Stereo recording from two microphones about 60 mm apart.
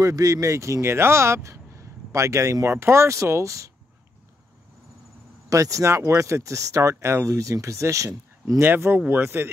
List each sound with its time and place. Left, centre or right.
0.0 s speech: right
2.7 s speech: right
5.5 s speech: right
8.6 s speech: right